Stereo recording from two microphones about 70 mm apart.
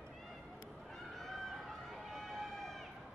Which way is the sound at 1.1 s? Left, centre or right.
Centre.